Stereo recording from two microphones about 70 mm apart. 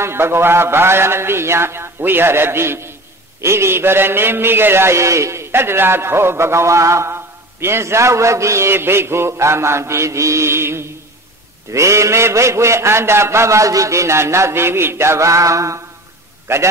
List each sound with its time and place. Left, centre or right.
0.0 s a man's voice: right